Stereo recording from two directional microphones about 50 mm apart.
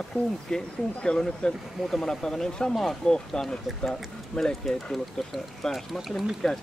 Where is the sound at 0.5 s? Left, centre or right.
Centre.